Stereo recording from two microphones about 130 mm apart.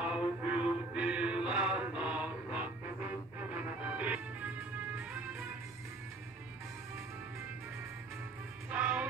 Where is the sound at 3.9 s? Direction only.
10° right (ahead or behind).